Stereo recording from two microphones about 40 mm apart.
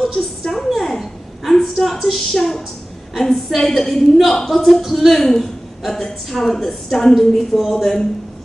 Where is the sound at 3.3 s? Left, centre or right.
Centre.